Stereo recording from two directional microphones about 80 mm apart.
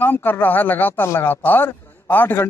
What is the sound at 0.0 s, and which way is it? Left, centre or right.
A man's voice, left.